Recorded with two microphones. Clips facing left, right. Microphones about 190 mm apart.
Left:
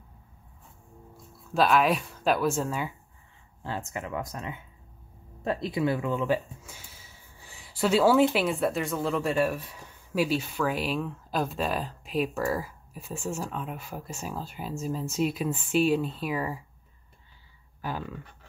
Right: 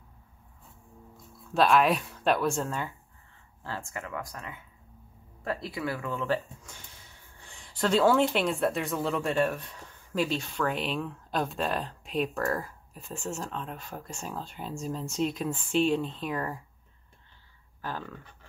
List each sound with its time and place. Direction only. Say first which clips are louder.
1.5 s speech: even; centre (ahead or behind)
3.6 s speech: left 3 dB; 20° left (ahead or behind)
17.8 s speech: left 3 dB; 10° left (ahead or behind)